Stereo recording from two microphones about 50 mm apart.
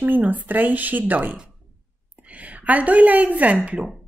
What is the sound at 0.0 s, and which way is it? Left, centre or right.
A woman's voice, right.